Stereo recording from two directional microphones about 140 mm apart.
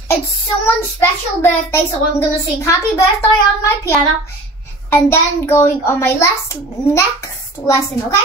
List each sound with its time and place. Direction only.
0.7 s a child's voice: 20° left (ahead or behind)